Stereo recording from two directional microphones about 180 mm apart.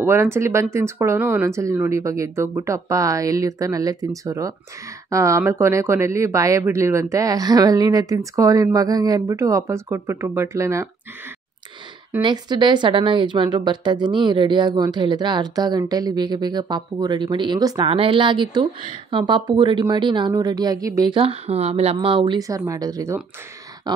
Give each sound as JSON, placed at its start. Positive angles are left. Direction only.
{"t": 0.0, "sound": "speech", "side_deg": -15}
{"t": 12.2, "sound": "a woman's voice", "side_deg": -25}